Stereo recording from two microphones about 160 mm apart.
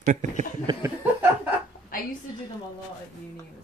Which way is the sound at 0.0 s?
50° right (ahead or behind).